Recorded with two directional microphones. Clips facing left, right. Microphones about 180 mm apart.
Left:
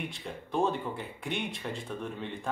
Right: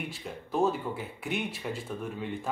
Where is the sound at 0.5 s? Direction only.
5° right (ahead or behind).